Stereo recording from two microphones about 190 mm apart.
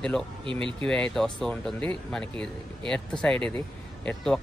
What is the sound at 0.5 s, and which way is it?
Speech, 25° right (ahead or behind).